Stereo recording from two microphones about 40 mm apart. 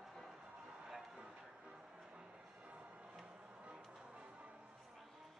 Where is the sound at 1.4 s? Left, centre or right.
Right.